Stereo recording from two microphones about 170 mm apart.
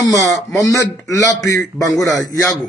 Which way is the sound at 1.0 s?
20° left (ahead or behind).